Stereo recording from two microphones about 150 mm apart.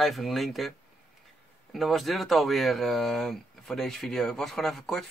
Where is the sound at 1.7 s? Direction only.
Centre (ahead or behind).